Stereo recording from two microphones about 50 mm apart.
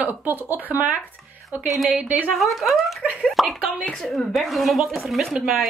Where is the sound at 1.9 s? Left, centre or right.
Right.